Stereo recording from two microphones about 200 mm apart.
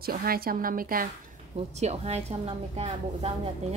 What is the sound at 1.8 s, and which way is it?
A woman's voice, 35° right (ahead or behind).